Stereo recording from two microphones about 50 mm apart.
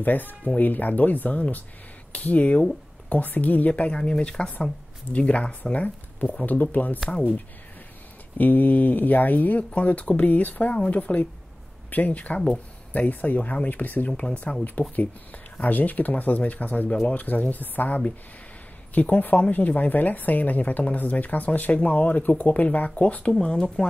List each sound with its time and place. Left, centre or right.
0.0 s speech: left
8.4 s speech: left; by 23.9 s centre